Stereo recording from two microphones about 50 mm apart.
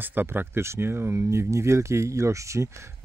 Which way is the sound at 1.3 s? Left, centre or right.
Right.